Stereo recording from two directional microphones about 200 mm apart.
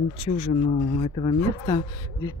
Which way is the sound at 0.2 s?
30° left (ahead or behind).